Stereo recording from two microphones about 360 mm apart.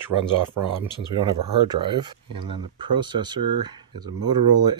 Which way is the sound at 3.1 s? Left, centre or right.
Centre.